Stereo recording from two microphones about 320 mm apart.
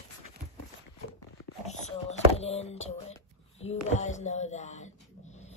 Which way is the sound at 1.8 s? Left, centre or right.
Centre.